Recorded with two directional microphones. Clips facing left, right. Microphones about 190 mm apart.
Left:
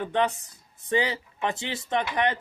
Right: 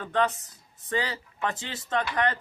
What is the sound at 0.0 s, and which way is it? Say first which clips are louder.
Speech: left 1 dB; 15° left (ahead or behind).